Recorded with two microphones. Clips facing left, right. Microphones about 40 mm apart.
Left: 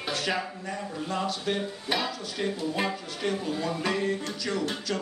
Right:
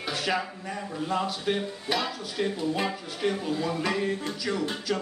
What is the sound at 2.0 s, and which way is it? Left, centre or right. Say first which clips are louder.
Speech: right 1 dB; centre.